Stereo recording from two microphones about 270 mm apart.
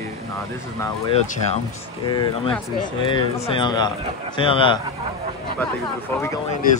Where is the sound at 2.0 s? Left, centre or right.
Centre.